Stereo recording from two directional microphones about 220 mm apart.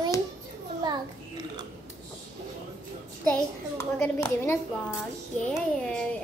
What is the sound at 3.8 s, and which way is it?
A woman's voice, 10° left (ahead or behind).